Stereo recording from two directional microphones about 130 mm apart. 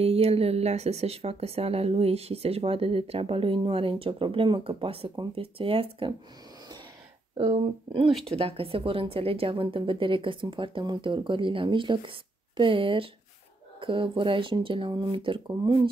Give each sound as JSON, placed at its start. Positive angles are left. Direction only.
{"t": 0.0, "sound": "a woman's voice", "side_deg": -50}
{"t": 7.3, "sound": "a woman's voice", "side_deg": -45}
{"t": 8.1, "sound": "speech", "side_deg": 0}
{"t": 8.4, "sound": "a woman's voice", "side_deg": -45}